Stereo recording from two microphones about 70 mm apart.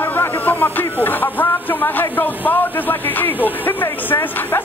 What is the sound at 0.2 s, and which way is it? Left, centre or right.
Speech, left.